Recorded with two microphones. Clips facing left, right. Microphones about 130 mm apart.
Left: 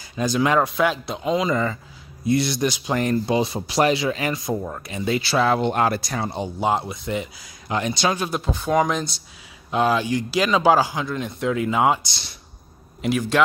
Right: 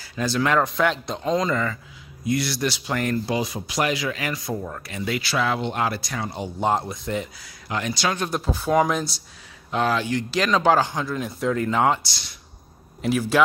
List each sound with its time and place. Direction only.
0.0 s speech: 15° left (ahead or behind)
2.2 s speech: 25° left (ahead or behind)
5.6 s speech: 50° left (ahead or behind); by 6.4 s 35° left (ahead or behind)
6.6 s speech: centre (ahead or behind)
7.4 s speech: 25° left (ahead or behind)
8.2 s speech: centre (ahead or behind)
9.7 s speech: 15° left (ahead or behind)
13.0 s speech: 5° right (ahead or behind)